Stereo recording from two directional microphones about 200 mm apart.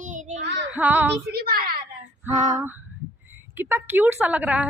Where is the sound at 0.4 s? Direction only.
60° right (ahead or behind).